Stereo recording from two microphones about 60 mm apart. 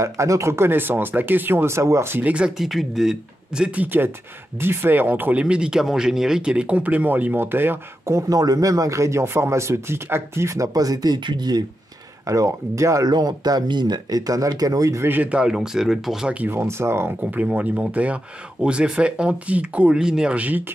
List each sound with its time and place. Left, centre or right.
0.0 s speech: right
2.2 s speech: centre
2.5 s speech: centre
3.6 s speech: right
5.4 s speech: centre; by 7.8 s right
8.0 s speech: right
8.3 s speech: right
12.3 s speech: right
14.1 s speech: right
15.3 s speech: centre
16.4 s speech: right
17.2 s speech: right
20.3 s speech: right